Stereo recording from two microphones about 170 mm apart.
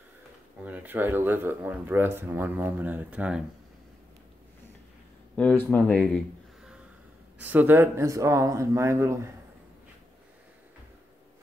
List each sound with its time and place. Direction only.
0.7 s speech: 10° right (ahead or behind)
5.3 s speech: 10° left (ahead or behind)
7.3 s speech: 10° right (ahead or behind)